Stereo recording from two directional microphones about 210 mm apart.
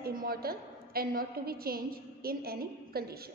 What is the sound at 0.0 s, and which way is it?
A woman's voice, 45° right (ahead or behind).